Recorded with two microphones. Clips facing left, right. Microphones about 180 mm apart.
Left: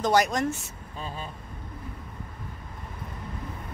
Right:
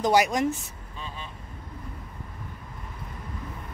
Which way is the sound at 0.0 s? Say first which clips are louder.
Right 1 dB; 10° right (ahead or behind).